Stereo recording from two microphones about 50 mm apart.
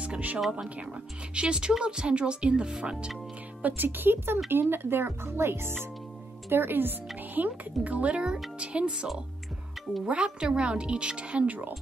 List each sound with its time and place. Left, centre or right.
0.0 s speech: right
3.6 s speech: right